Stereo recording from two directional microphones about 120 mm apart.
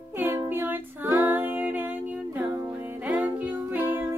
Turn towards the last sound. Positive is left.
turn(degrees=-15)  # may be behind; listen again after turning